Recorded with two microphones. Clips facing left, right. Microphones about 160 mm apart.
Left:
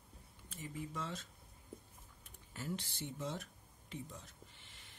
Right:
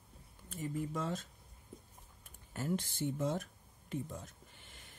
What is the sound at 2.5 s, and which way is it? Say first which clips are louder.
Speech: right 7 dB; 50° right (ahead or behind).